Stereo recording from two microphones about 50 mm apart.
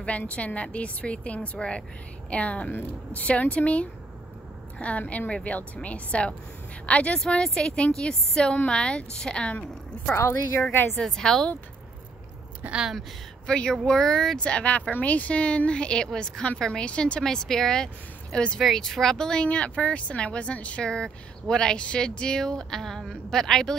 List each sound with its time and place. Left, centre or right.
0.0 s speech: left
7.2 s speech: centre
11.0 s speech: centre
12.6 s speech: right
13.5 s speech: centre
17.2 s speech: centre
18.6 s speech: centre
19.4 s speech: left